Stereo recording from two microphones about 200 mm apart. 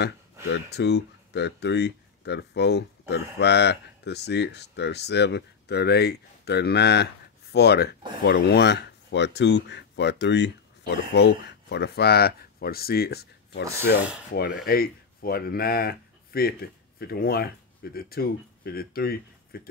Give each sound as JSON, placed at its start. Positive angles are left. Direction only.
{"t": 0.0, "sound": "speech", "side_deg": 55}